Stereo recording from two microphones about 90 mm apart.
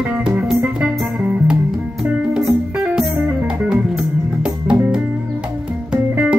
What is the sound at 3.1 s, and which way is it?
Music, 20° right (ahead or behind).